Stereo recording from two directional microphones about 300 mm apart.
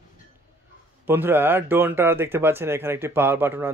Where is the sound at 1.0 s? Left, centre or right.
Centre.